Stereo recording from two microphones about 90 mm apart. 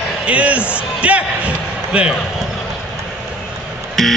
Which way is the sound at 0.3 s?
15° right (ahead or behind).